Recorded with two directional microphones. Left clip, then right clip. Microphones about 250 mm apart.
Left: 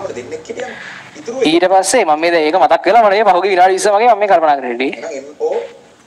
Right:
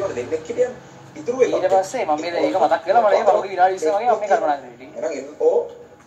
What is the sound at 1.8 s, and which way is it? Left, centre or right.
Speech, left.